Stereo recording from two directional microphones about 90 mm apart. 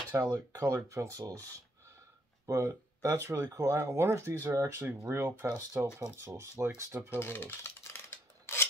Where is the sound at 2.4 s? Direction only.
40° right (ahead or behind).